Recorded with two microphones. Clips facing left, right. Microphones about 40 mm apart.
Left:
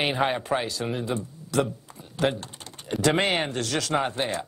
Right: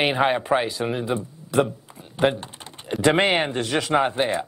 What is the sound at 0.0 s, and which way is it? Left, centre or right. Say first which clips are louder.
Speech: right 4 dB; centre.